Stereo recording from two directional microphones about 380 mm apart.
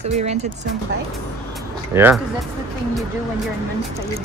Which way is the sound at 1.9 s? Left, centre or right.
Centre.